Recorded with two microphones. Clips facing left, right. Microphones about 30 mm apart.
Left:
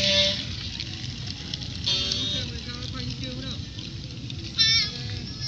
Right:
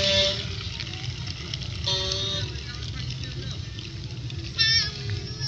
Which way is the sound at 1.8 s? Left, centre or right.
Left.